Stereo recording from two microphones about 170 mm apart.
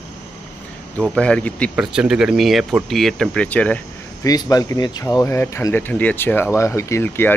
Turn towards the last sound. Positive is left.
turn(degrees=15)  # may be behind; listen again after turning